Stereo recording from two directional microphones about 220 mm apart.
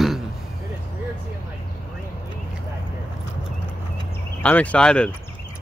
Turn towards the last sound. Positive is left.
turn(degrees=5)  # may be behind; listen again after turning